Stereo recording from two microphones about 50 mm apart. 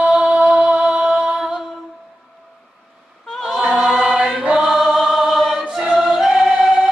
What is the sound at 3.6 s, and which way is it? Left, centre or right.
Choir, centre.